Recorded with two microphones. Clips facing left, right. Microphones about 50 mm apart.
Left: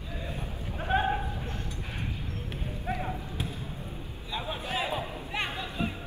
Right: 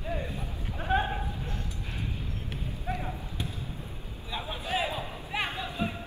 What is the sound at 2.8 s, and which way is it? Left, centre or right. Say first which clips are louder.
Basketball bounce: left 2 dB; centre.